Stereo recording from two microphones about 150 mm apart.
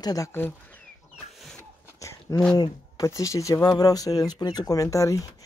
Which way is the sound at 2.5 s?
25° left (ahead or behind).